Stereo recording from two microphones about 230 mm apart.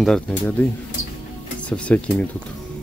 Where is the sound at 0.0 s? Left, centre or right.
Centre.